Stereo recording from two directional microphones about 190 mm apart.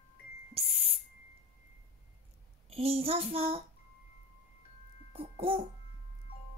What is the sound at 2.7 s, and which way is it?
Child singing, 30° right (ahead or behind).